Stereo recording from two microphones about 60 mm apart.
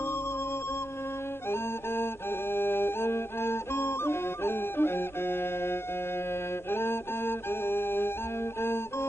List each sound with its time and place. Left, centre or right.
2.5 s music: left